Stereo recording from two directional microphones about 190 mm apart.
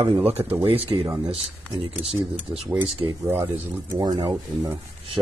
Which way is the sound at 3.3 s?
15° right (ahead or behind).